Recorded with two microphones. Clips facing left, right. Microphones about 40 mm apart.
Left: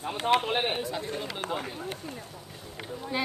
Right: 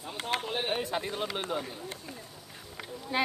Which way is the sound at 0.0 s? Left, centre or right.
Left.